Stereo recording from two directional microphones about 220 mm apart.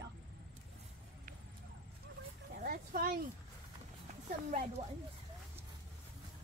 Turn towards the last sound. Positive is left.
turn(degrees=-30)  # may be behind; listen again after turning